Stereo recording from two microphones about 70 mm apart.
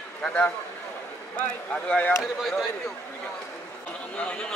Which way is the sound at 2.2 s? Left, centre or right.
Centre.